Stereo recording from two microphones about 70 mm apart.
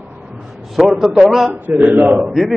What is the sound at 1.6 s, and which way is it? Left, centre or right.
Speech, right.